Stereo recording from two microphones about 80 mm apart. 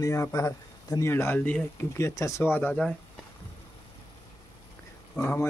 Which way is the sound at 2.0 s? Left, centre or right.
Left.